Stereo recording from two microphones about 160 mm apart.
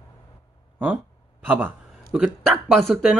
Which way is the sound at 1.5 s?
5° right (ahead or behind).